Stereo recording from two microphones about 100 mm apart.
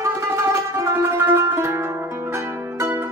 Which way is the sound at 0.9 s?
25° right (ahead or behind).